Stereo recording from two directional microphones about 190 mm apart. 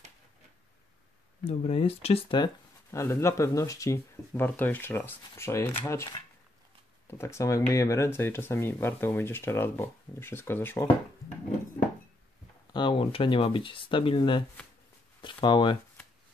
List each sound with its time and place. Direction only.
1.4 s speech: 35° left (ahead or behind); by 6.0 s 15° left (ahead or behind)
7.1 s speech: 15° left (ahead or behind)
12.7 s speech: 25° left (ahead or behind)